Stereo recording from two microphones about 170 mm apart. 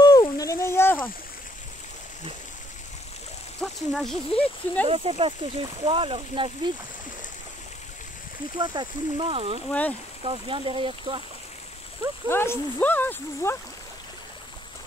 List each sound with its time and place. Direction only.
0.0 s a sound: 25° left (ahead or behind)
3.6 s speech: centre (ahead or behind)
4.8 s speech: 35° right (ahead or behind)
8.5 s speech: 25° right (ahead or behind)
9.7 s speech: 10° left (ahead or behind)
10.2 s speech: 30° right (ahead or behind)
12.3 s speech: 15° left (ahead or behind)